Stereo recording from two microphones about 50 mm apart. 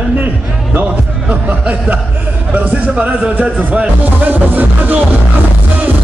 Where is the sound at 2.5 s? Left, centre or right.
Right.